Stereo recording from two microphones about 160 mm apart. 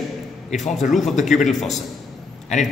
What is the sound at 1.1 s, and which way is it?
Speech, 50° left (ahead or behind).